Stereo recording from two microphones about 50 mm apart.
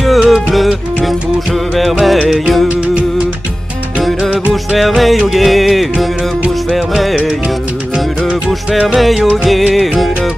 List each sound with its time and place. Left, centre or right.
0.0 s music: centre
2.9 s music: right
4.2 s music: centre
4.7 s music: centre
8.5 s music: centre